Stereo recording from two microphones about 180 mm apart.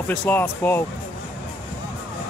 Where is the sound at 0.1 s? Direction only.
10° left (ahead or behind).